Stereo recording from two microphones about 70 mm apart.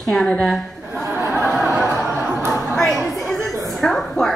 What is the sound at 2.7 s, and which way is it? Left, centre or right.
Chatter, centre.